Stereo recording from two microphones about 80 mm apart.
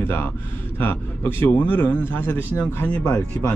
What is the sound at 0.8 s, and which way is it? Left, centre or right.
A man's voice, left.